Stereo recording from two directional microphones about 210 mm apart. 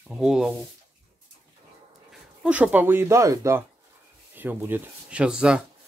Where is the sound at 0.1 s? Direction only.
Centre (ahead or behind).